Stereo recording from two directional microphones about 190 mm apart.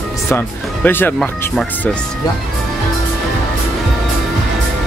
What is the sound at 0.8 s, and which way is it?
Speech, 10° left (ahead or behind).